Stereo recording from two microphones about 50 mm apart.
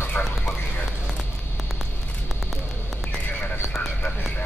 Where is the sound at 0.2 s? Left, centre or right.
Left.